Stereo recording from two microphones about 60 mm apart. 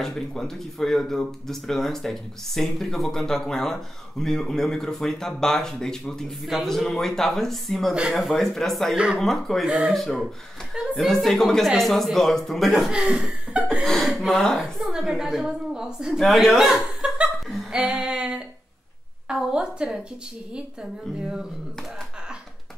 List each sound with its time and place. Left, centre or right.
0.0 s a man's voice: centre
7.9 s a woman's voice: centre
8.2 s a man's voice: centre
8.9 s a woman's voice: centre
9.2 s a man's voice: centre
9.7 s a woman's voice: centre
9.9 s a man's voice: centre
12.9 s a woman's voice: centre
13.8 s a man's voice: centre
14.8 s a woman's voice: centre
17.7 s female singing: centre
19.2 s a woman's voice: centre